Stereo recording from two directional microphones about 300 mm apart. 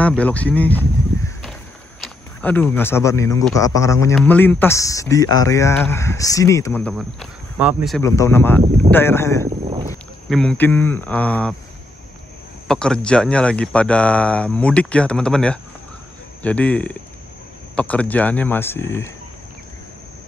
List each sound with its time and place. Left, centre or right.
0.0 s speech: centre
9.5 s boat: centre
10.3 s speech: centre
12.6 s speech: centre